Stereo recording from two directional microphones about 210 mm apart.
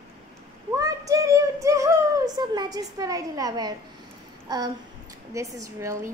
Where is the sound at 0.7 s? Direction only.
15° right (ahead or behind).